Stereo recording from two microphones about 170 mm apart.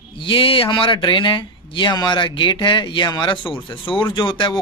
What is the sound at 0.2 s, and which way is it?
Speech, 30° left (ahead or behind).